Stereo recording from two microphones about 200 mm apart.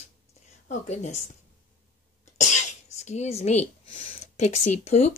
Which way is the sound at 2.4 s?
35° left (ahead or behind).